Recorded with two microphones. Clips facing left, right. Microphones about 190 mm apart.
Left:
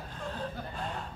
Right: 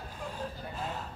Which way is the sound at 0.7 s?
5° right (ahead or behind).